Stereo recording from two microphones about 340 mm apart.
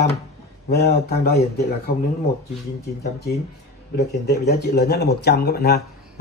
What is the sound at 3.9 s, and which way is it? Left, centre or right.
Speech, left.